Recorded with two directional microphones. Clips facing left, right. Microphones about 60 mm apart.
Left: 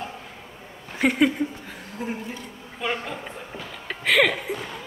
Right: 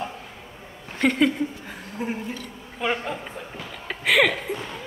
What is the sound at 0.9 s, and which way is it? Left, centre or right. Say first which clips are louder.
Speech: even; centre.